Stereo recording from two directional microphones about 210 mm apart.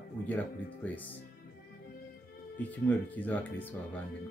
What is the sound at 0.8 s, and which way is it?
Speech, 10° left (ahead or behind).